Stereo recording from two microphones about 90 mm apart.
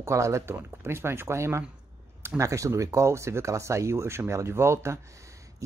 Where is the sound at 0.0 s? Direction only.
35° right (ahead or behind).